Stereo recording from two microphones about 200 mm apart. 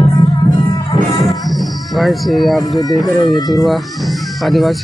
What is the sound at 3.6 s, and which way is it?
Music, centre (ahead or behind).